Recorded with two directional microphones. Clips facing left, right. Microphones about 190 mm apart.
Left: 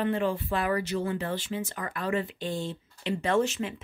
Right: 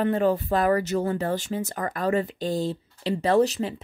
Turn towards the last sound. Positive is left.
turn(degrees=-35)  # may be behind; listen again after turning